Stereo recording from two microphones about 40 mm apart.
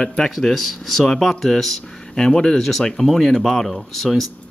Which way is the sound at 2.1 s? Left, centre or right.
Centre.